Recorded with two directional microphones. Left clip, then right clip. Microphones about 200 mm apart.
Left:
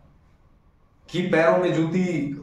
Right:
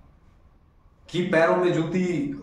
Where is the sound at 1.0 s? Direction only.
5° right (ahead or behind).